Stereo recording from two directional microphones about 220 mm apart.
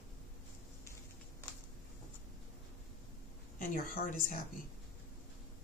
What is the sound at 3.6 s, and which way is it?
Speech, 40° left (ahead or behind).